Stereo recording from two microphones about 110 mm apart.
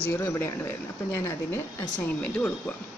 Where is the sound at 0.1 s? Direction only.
25° left (ahead or behind).